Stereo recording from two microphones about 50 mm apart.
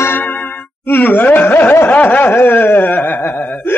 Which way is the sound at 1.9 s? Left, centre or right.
Left.